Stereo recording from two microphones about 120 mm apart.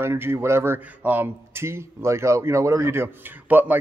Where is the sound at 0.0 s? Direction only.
20° right (ahead or behind).